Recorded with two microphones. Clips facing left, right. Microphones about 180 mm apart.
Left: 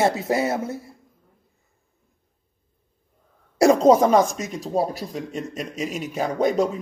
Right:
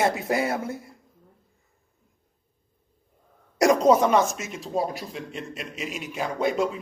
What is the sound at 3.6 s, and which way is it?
Speech, 30° left (ahead or behind).